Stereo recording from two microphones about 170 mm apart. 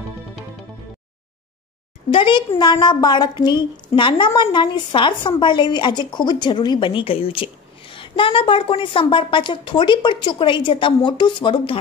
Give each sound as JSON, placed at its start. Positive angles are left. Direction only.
{"t": 2.0, "sound": "a woman's voice", "side_deg": 30}